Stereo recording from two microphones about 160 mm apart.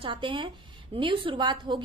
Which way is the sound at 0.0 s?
30° right (ahead or behind).